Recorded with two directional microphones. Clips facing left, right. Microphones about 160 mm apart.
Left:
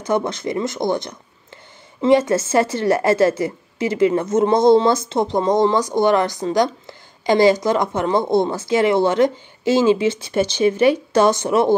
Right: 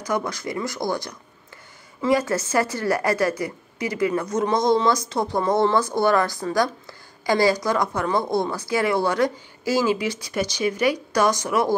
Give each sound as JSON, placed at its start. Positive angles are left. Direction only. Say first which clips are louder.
{"t": 0.0, "sound": "a woman's voice", "louder": "left 5 dB", "side_deg": 25}